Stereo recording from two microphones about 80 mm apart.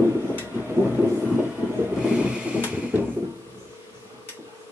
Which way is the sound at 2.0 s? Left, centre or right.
Centre.